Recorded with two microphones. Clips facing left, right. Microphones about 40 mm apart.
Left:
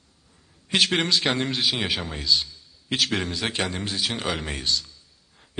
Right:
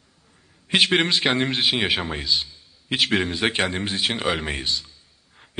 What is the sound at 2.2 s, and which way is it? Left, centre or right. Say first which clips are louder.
A man's voice: left 1 dB; right.